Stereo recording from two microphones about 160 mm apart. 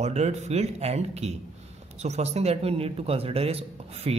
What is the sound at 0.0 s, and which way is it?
A man's voice, 45° right (ahead or behind).